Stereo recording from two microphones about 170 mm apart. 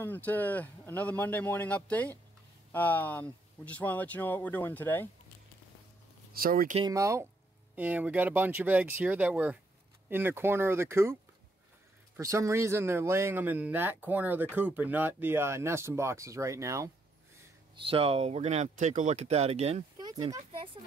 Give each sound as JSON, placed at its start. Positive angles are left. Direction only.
{"t": 0.0, "sound": "speech", "side_deg": 10}
{"t": 6.3, "sound": "speech", "side_deg": -60}
{"t": 6.9, "sound": "speech", "side_deg": -20}
{"t": 12.2, "sound": "speech", "side_deg": -15}
{"t": 17.7, "sound": "speech", "side_deg": -35}
{"t": 20.0, "sound": "speech", "side_deg": -25}